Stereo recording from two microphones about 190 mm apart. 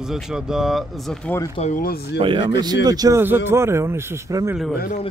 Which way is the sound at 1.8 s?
55° left (ahead or behind).